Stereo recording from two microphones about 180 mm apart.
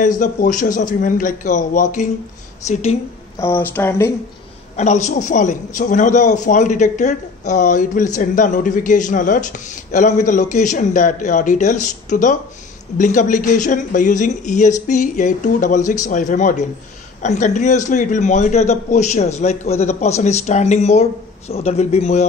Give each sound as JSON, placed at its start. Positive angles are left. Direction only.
{"t": 0.2, "sound": "a man's voice", "side_deg": 45}
{"t": 3.3, "sound": "speech", "side_deg": 15}
{"t": 4.7, "sound": "a man's voice", "side_deg": 40}